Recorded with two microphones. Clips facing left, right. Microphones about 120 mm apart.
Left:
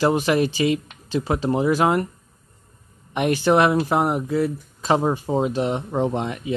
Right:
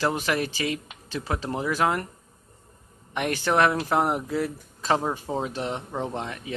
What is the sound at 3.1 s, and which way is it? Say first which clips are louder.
Speech: left 7 dB; 15° left (ahead or behind).